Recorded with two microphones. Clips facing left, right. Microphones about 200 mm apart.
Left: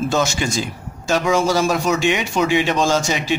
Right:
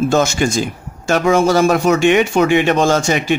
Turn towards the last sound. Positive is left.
turn(degrees=-55)  # may be behind; listen again after turning